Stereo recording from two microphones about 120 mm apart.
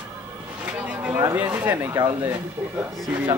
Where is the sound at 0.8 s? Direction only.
10° right (ahead or behind).